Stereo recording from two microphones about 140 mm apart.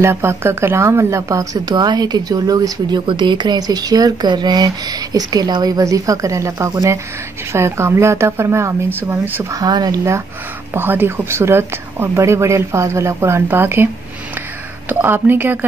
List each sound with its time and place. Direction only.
0.0 s speech: 15° right (ahead or behind)
14.9 s speech: 15° right (ahead or behind)